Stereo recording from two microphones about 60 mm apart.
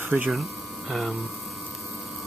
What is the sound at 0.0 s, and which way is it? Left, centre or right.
Speech, right.